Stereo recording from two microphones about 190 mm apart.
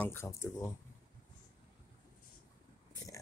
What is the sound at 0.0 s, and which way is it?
Speech, 10° left (ahead or behind).